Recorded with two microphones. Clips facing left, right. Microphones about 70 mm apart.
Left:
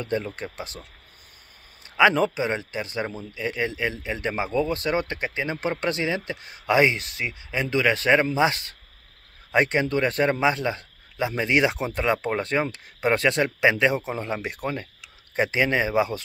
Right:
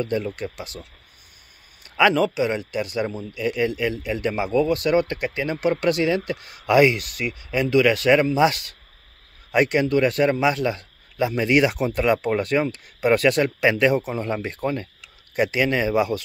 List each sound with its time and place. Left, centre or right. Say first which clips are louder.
0.0 s speech: right 3 dB; left
2.0 s speech: right 1 dB; left